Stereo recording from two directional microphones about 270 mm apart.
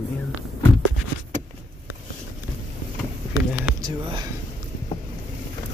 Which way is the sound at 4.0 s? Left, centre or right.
Centre.